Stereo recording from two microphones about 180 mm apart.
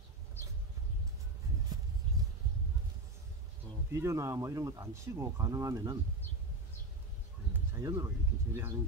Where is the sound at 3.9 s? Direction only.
15° right (ahead or behind).